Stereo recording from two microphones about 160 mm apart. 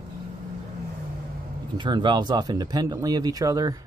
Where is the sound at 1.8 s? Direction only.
30° right (ahead or behind).